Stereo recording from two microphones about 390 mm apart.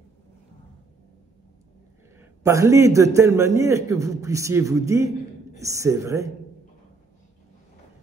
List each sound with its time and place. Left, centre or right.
2.1 s a man's voice: centre